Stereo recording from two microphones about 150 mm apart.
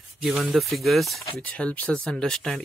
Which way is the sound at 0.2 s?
Centre (ahead or behind).